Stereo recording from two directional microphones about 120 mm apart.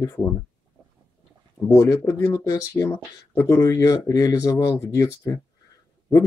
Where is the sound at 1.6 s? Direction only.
20° left (ahead or behind).